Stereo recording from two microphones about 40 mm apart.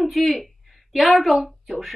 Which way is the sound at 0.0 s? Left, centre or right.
Centre.